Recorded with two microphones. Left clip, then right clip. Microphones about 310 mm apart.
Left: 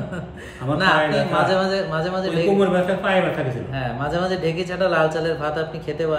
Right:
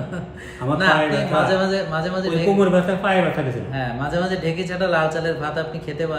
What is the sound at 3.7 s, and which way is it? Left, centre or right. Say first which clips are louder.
Speech: even; centre.